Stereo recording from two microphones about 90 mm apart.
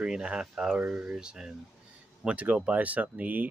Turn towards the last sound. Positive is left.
turn(degrees=-15)  # may be behind; listen again after turning